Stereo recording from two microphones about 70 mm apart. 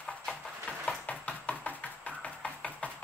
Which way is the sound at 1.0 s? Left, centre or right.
Left.